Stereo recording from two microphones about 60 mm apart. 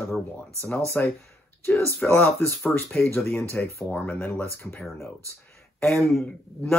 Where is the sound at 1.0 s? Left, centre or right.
Left.